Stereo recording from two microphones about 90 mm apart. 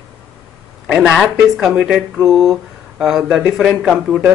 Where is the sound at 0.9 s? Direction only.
10° right (ahead or behind).